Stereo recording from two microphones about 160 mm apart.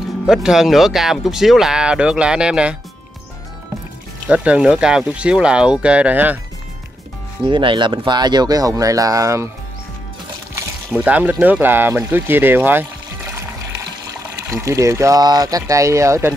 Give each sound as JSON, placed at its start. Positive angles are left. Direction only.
{"t": 0.3, "sound": "speech", "side_deg": -5}
{"t": 4.3, "sound": "speech", "side_deg": -5}
{"t": 7.4, "sound": "speech", "side_deg": -30}
{"t": 11.1, "sound": "speech", "side_deg": -10}